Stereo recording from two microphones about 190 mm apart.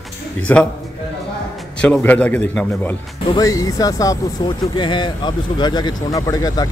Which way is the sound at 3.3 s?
20° left (ahead or behind).